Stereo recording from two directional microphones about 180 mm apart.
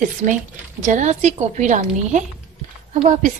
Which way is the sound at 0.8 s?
40° right (ahead or behind).